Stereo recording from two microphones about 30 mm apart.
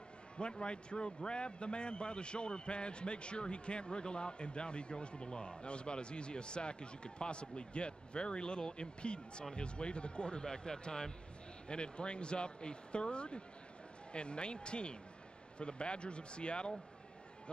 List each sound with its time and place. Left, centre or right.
0.4 s a man's voice: left